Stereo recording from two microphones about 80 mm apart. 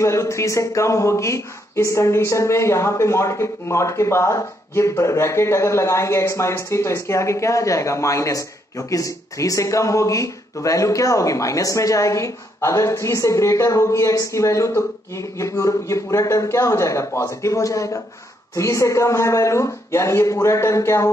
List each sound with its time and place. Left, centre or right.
0.0 s speech: left